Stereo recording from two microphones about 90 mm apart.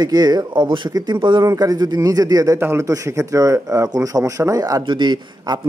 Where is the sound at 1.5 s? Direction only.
40° right (ahead or behind).